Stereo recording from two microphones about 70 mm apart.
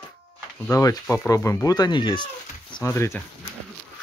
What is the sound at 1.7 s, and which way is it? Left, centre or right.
Speech, left.